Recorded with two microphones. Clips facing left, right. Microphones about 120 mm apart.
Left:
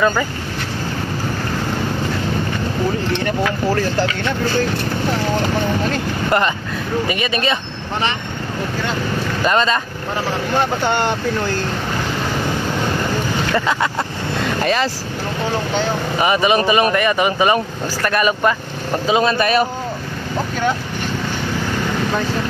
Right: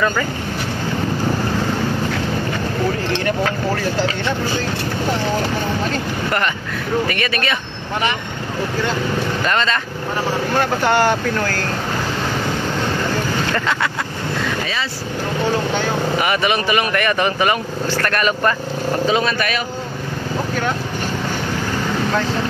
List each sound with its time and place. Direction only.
7.1 s speech: 20° left (ahead or behind)
9.4 s speech: 20° left (ahead or behind)
16.2 s speech: 25° left (ahead or behind)
19.0 s speech: 25° left (ahead or behind)